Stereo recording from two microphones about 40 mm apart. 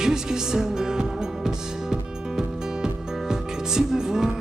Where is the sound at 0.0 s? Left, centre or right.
Centre.